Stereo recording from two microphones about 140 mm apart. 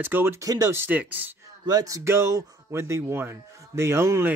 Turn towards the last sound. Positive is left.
turn(degrees=-20)  # may be behind; listen again after turning